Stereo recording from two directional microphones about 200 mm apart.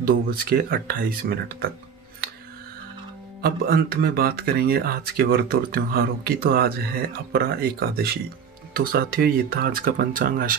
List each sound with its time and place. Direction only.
0.0 s speech: 50° right (ahead or behind)
3.4 s speech: 50° right (ahead or behind)